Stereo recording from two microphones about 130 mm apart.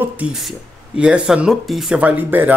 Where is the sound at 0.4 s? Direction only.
5° right (ahead or behind).